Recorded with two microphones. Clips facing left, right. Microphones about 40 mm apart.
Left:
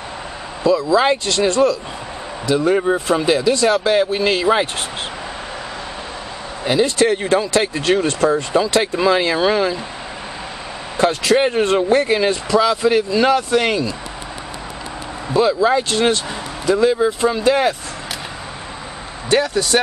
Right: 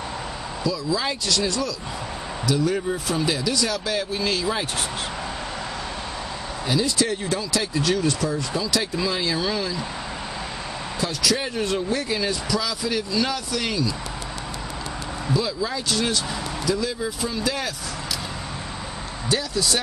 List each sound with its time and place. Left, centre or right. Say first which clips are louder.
0.7 s speech: left 11 dB; left
6.6 s speech: left 8 dB; left
11.0 s speech: left 10 dB; left
15.3 s speech: left 12 dB; left
19.2 s speech: left 7 dB; left